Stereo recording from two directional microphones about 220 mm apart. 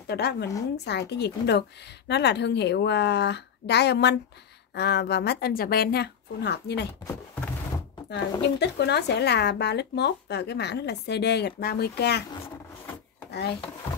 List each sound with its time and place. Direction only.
0.1 s speech: 50° left (ahead or behind)
7.1 s a sound: 15° left (ahead or behind)
8.1 s speech: 50° left (ahead or behind)